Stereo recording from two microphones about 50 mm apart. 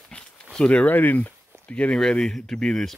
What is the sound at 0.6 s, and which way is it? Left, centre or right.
Speech, left.